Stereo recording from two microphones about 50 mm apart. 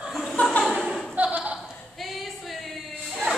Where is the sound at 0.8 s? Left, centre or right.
Centre.